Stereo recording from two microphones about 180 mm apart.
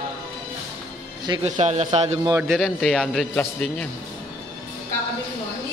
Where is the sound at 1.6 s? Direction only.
40° right (ahead or behind).